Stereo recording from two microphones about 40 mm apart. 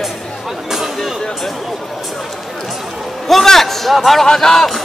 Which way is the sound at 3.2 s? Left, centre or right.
Centre.